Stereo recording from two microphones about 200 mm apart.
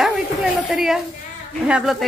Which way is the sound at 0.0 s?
Centre (ahead or behind).